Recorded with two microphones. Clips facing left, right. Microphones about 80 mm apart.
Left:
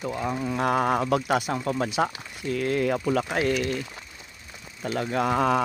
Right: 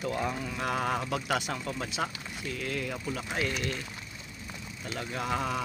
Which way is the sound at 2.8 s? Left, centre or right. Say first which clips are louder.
Left 11 dB; left.